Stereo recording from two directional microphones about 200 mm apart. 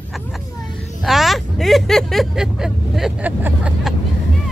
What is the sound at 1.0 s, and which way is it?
Speech, centre (ahead or behind).